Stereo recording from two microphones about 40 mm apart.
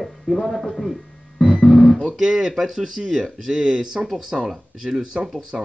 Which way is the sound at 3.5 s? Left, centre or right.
Centre.